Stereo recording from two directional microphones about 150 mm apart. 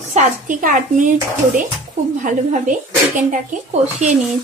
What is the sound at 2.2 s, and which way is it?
Speech, 60° right (ahead or behind).